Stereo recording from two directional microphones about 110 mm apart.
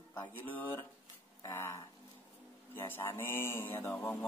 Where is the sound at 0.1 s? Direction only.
20° left (ahead or behind).